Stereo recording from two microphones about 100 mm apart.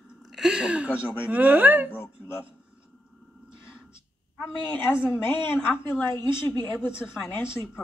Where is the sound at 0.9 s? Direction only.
20° left (ahead or behind).